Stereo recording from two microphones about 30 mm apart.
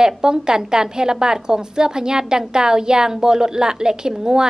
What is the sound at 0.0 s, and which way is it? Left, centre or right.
A woman's voice, right.